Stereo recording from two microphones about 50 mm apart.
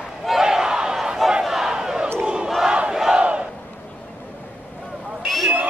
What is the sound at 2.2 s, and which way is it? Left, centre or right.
Battle cry, centre.